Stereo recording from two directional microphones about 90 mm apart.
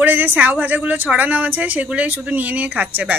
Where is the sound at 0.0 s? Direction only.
20° right (ahead or behind).